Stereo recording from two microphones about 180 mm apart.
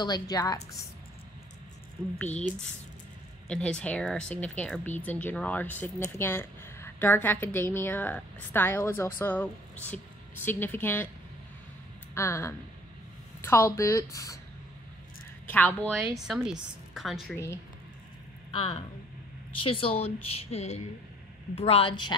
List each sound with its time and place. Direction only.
0.0 s a woman's voice: 20° left (ahead or behind)
2.1 s speech: 10° left (ahead or behind)
3.4 s a woman's voice: 5° left (ahead or behind)
12.1 s speech: 15° left (ahead or behind)
15.4 s speech: 10° left (ahead or behind)
16.3 s a woman's voice: 5° right (ahead or behind)
19.5 s a woman's voice: 30° left (ahead or behind)